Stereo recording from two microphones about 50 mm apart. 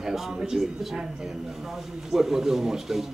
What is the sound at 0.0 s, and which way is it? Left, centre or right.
A man's voice, centre.